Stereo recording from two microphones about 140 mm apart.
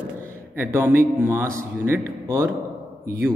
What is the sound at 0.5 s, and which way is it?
A man's voice, 15° right (ahead or behind).